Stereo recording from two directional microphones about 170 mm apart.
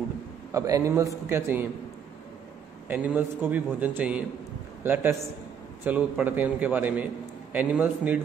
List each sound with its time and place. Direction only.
0.5 s a man's voice: 20° right (ahead or behind)
2.9 s a man's voice: 10° right (ahead or behind)